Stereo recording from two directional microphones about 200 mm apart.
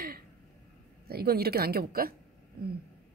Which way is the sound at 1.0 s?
50° right (ahead or behind).